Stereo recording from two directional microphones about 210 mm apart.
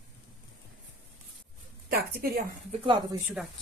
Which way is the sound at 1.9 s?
45° right (ahead or behind).